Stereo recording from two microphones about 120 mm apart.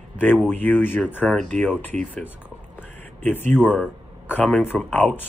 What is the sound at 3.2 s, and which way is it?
Speech, 15° left (ahead or behind).